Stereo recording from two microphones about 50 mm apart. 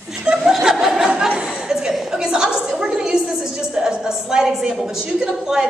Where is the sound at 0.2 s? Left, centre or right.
Centre.